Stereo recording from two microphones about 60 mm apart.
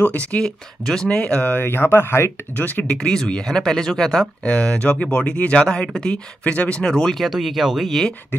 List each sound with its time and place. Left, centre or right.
0.0 s speech: left
1.6 s speech: left
2.5 s speech: left
2.8 s speech: centre
4.5 s speech: left
6.8 s speech: centre